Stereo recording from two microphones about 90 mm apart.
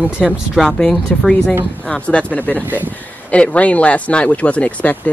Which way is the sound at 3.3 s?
15° left (ahead or behind).